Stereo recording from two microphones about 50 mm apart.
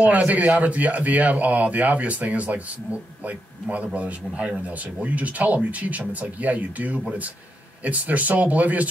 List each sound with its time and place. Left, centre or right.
0.0 s speech: right